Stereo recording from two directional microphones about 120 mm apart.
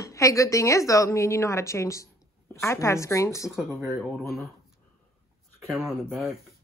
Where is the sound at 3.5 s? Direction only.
25° right (ahead or behind).